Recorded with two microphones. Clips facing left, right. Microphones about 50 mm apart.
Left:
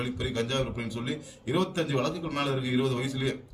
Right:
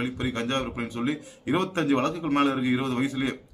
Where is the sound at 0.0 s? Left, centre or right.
Right.